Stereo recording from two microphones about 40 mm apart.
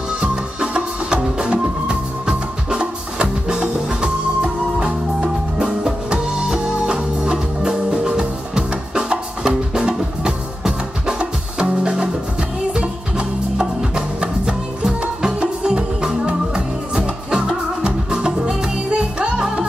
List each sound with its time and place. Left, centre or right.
0.2 s music: right
18.9 s music: right